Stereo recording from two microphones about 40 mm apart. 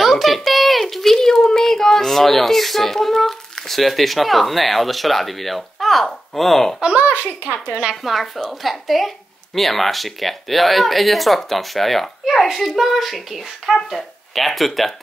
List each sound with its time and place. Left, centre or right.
0.0 s a sound: centre
7.0 s a child's voice: right
7.9 s speech: centre